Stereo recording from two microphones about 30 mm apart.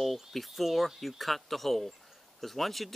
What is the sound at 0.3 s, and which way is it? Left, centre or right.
Speech, centre.